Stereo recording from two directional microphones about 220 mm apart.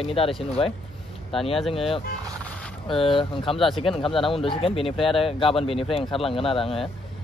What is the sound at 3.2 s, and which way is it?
Speech, 25° left (ahead or behind).